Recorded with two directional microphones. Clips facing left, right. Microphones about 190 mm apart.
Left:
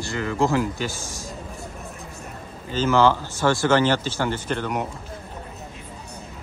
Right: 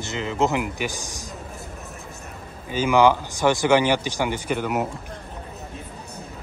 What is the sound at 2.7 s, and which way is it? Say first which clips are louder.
Speech: right 1 dB; 15° right (ahead or behind).